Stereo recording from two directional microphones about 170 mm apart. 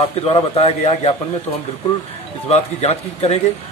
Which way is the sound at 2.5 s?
40° left (ahead or behind).